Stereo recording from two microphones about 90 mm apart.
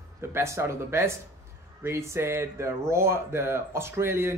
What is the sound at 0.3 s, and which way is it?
Speech, 30° right (ahead or behind).